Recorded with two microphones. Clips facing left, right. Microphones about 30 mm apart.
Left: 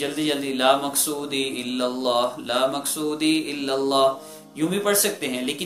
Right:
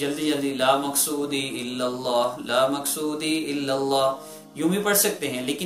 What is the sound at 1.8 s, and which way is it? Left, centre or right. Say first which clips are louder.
Speech: left 1 dB; left.